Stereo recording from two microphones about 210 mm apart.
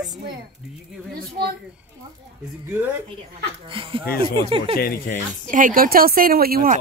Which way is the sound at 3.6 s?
25° right (ahead or behind).